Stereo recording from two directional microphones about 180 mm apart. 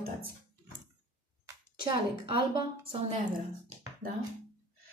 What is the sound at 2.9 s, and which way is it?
Speech, 40° right (ahead or behind).